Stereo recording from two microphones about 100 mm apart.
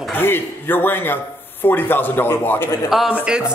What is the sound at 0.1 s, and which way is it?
A man's voice, 20° left (ahead or behind).